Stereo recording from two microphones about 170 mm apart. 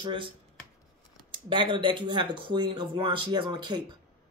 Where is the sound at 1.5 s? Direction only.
30° right (ahead or behind).